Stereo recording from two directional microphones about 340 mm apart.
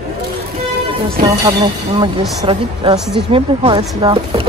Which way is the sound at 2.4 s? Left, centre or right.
Centre.